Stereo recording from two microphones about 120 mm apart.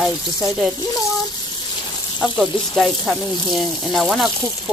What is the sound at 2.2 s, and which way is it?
Speech, centre (ahead or behind).